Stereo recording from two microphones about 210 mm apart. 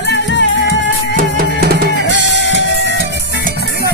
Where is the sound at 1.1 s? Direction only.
45° right (ahead or behind).